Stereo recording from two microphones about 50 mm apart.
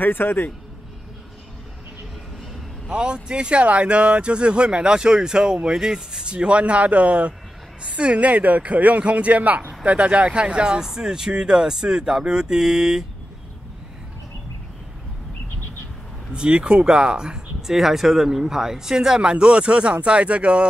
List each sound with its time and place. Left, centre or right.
0.0 s a man's voice: left
2.9 s speech: centre
16.3 s speech: right
17.6 s speech: centre; by 20.6 s right